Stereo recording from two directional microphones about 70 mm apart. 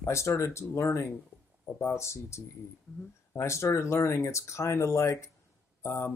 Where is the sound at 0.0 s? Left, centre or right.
Left.